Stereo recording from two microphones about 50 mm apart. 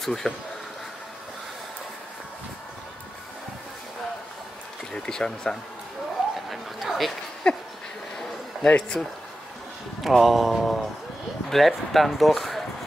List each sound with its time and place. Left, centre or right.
0.0 s speech: centre
4.9 s speech: centre
6.2 s a sound: centre
6.5 s dog: centre
7.5 s a sound: centre
9.0 s speech: centre
10.0 s speech: centre